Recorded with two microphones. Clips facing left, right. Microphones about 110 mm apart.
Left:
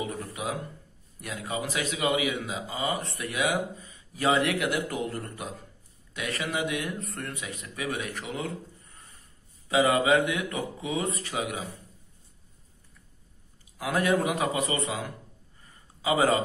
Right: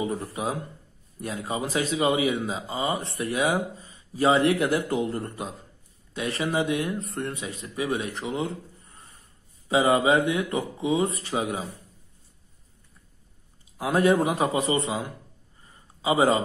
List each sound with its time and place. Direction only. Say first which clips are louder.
0.0 s speech: right 4 dB; 25° right (ahead or behind)
13.7 s a man's voice: right 4 dB; 25° right (ahead or behind)